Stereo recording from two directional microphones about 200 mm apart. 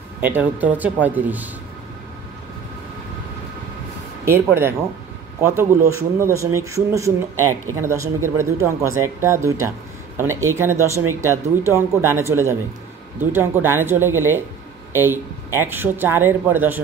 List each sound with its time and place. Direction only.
0.2 s speech: 10° right (ahead or behind)
4.2 s speech: 10° right (ahead or behind)